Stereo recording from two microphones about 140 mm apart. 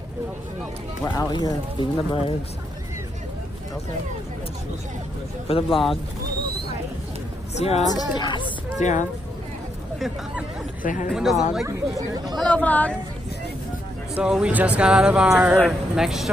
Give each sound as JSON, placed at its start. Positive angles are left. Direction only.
{"t": 1.0, "sound": "speech", "side_deg": 30}
{"t": 5.5, "sound": "a woman's voice", "side_deg": 45}
{"t": 7.5, "sound": "a woman's voice", "side_deg": 50}
{"t": 7.9, "sound": "speech", "side_deg": 30}
{"t": 8.7, "sound": "speech", "side_deg": 60}
{"t": 9.9, "sound": "speech", "side_deg": 0}
{"t": 10.8, "sound": "speech", "side_deg": 65}
{"t": 11.1, "sound": "speech", "side_deg": 0}
{"t": 11.6, "sound": "speech", "side_deg": -25}
{"t": 12.4, "sound": "speech", "side_deg": 10}
{"t": 14.1, "sound": "speech", "side_deg": -5}